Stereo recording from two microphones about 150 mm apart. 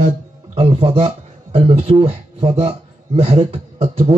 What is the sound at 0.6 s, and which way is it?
Speech, 40° right (ahead or behind).